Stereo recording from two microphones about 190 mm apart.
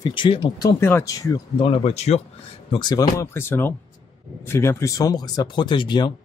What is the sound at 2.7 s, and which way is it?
Speech, 25° left (ahead or behind).